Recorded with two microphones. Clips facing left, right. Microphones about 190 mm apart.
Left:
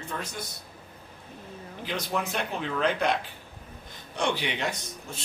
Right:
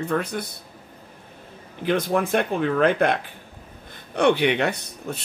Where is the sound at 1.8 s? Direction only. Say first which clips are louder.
Right 9 dB; 55° right (ahead or behind).